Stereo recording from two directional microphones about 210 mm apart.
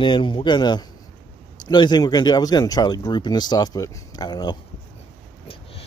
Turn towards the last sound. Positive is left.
turn(degrees=20)  # may be behind; listen again after turning